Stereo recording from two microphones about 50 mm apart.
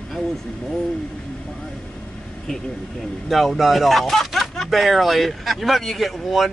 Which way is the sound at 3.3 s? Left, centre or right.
Centre.